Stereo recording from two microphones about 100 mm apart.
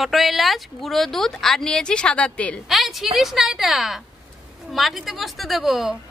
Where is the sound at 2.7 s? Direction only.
Centre (ahead or behind).